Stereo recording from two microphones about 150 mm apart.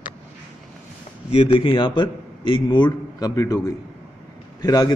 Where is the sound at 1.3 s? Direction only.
40° left (ahead or behind).